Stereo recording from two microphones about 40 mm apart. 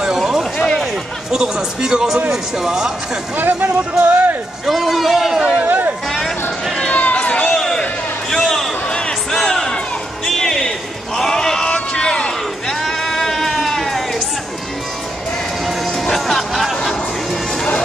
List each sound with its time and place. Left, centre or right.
0.0 s a sound: centre
1.3 s speech: centre
3.3 s speech: right
4.6 s speech: centre
5.7 s a sound: right
6.9 s run: left
7.4 s a sound: centre
8.8 s crowd: left
9.3 s crowd: centre
10.2 s a sound: centre
12.6 s sheep: centre
15.6 s music: centre